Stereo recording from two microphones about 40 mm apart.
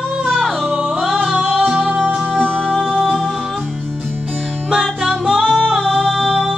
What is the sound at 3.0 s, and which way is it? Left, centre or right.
Music, centre.